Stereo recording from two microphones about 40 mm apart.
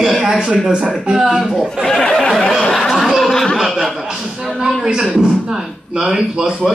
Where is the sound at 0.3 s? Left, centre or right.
Right.